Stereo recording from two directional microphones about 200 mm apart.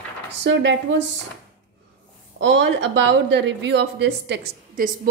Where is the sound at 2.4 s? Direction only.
65° right (ahead or behind).